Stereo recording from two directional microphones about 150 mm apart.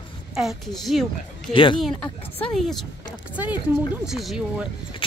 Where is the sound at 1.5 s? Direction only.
35° left (ahead or behind).